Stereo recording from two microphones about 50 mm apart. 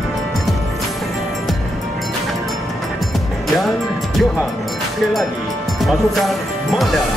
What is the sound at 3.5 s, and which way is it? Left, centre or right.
Music, centre.